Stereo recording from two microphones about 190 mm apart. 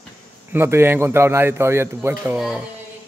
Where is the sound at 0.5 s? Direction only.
10° right (ahead or behind).